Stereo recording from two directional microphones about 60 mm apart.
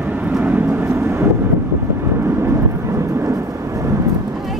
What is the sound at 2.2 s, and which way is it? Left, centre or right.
Vehicle, right.